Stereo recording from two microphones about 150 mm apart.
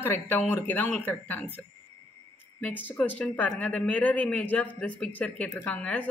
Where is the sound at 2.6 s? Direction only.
10° left (ahead or behind).